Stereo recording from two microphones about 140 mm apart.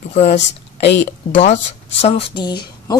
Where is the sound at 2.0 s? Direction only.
40° left (ahead or behind).